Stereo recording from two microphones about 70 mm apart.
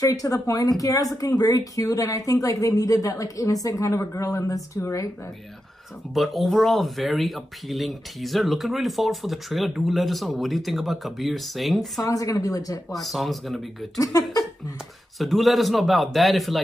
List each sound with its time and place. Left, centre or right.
0.0 s speech: left
6.1 s speech: centre
12.0 s speech: left
12.9 s speech: centre
13.9 s speech: left
15.1 s speech: centre